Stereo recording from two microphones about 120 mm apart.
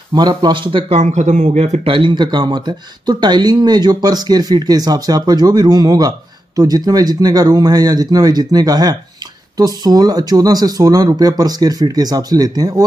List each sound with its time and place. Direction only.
0.1 s speech: 35° right (ahead or behind)
0.9 s speech: 75° right (ahead or behind)
1.9 s speech: 40° right (ahead or behind)